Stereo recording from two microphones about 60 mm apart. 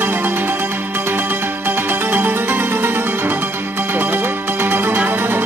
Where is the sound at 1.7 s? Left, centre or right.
Right.